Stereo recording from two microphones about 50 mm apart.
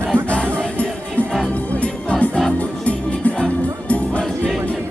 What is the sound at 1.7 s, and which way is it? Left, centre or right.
Music, left.